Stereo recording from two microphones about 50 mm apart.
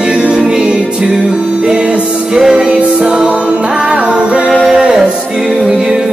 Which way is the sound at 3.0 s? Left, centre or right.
Right.